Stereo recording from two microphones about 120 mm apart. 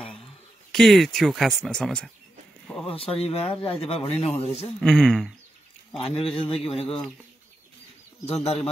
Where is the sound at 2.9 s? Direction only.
50° left (ahead or behind).